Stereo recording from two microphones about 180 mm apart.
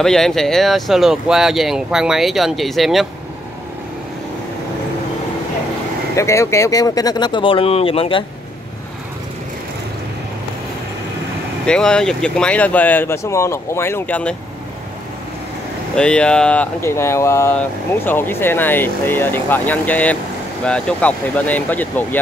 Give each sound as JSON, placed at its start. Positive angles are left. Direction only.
{"t": 0.0, "sound": "speech", "side_deg": 0}
{"t": 6.1, "sound": "speech", "side_deg": 15}
{"t": 11.6, "sound": "speech", "side_deg": 5}
{"t": 16.0, "sound": "speech", "side_deg": 5}